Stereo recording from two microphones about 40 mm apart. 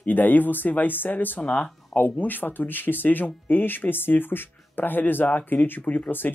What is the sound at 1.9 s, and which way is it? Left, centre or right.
Speech, left.